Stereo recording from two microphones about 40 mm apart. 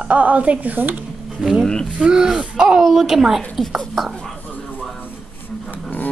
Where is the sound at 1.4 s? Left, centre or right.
Right.